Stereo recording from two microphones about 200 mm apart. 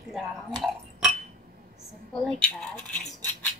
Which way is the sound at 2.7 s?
5° left (ahead or behind).